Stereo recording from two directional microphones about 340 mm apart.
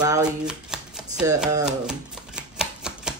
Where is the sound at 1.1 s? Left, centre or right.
Centre.